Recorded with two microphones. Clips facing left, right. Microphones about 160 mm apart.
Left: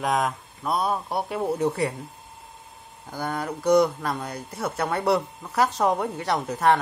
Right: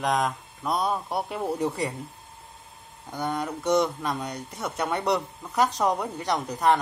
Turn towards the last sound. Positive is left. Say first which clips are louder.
# left 2 dB
turn(degrees=0)  # may be behind; listen again after turning